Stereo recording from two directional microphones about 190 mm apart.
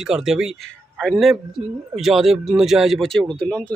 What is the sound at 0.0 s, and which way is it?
Speech, 5° right (ahead or behind).